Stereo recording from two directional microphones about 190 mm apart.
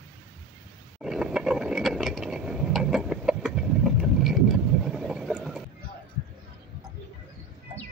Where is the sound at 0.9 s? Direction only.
5° right (ahead or behind).